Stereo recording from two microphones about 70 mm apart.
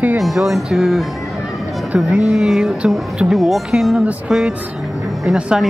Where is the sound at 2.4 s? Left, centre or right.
Centre.